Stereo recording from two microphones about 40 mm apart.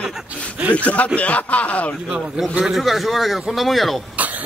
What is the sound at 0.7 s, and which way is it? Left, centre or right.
Speech, left.